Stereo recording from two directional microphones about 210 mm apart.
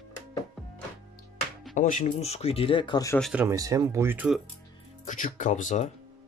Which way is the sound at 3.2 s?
Centre (ahead or behind).